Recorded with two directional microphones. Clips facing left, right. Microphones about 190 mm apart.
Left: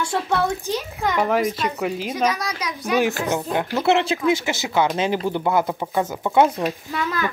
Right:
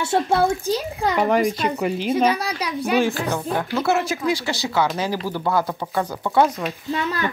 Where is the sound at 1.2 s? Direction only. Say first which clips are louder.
Right 2 dB; centre (ahead or behind).